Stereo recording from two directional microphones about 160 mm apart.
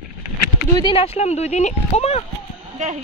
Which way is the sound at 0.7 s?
30° left (ahead or behind).